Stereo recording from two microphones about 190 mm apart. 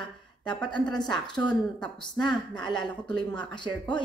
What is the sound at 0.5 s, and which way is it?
Speech, 25° left (ahead or behind).